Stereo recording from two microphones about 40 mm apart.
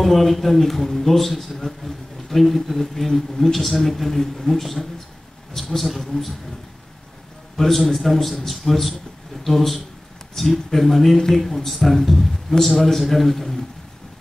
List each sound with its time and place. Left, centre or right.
0.0 s a man's voice: centre
7.5 s a man's voice: centre